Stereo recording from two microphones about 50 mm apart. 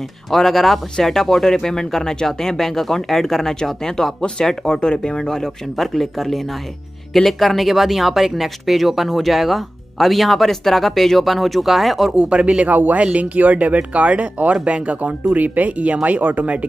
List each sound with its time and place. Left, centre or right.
0.3 s speech: centre
12.1 s speech: centre
12.7 s speech: right